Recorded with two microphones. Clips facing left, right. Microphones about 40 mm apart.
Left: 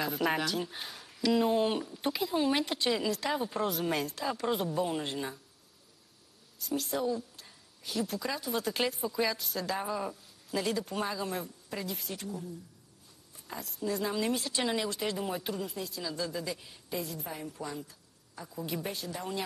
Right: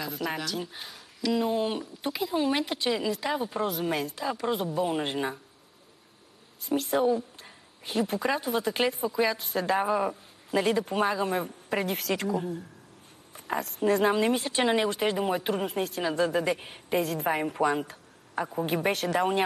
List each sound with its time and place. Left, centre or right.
0.0 s speech: centre
4.8 s a woman's voice: right
6.6 s a woman's voice: right
8.5 s speech: centre
9.4 s a woman's voice: right
11.4 s a woman's voice: right
12.0 s a woman's voice: right
13.3 s speech: right
14.1 s a woman's voice: right
15.5 s a woman's voice: right
17.0 s a woman's voice: right
18.5 s a woman's voice: right
18.9 s speech: right